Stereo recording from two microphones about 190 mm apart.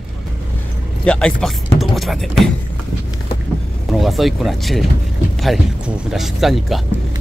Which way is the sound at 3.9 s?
Centre (ahead or behind).